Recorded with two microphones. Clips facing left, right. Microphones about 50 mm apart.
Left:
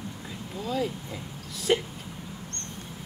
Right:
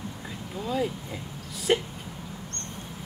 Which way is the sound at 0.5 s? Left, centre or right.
Centre.